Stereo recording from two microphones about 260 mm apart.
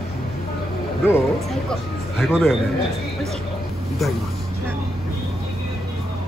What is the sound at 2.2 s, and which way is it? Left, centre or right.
Speech, centre.